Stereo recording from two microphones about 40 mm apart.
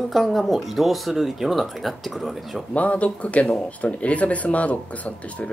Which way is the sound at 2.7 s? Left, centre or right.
Left.